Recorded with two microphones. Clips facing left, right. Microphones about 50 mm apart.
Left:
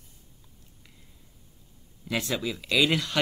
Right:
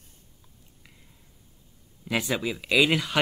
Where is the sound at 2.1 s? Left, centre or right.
Centre.